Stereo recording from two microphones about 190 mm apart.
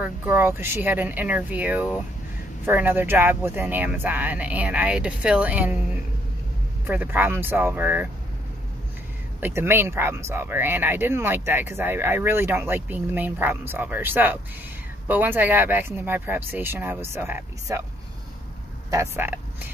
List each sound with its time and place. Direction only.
0.0 s speech: 10° right (ahead or behind)
6.9 s speech: 10° right (ahead or behind)
9.4 s speech: 10° right (ahead or behind)
18.9 s speech: 15° right (ahead or behind)